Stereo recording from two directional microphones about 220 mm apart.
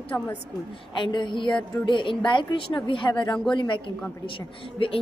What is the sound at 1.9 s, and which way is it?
A woman's voice, 20° left (ahead or behind).